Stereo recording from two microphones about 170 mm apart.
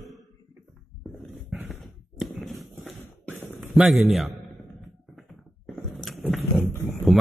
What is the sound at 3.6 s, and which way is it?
Speech, centre (ahead or behind).